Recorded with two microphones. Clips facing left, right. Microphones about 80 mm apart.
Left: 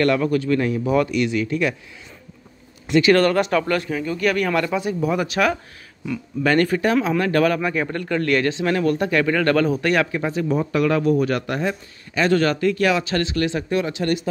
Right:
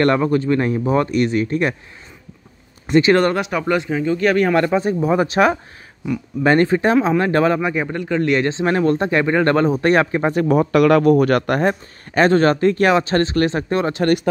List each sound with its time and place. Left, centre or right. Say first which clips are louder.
0.0 s speech: right 3 dB; right
2.9 s speech: right 2 dB; right
3.3 s speech: even; centre; by 10.3 s right
10.3 s speech: right 8 dB; right